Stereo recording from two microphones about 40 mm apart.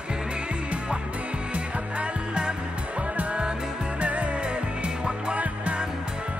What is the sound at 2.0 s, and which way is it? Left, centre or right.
Music, right.